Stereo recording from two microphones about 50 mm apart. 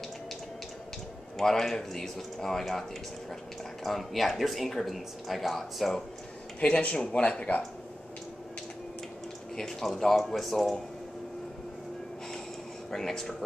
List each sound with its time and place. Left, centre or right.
1.4 s speech: centre
3.8 s speech: centre
6.6 s speech: left
9.6 s speech: centre
12.9 s speech: centre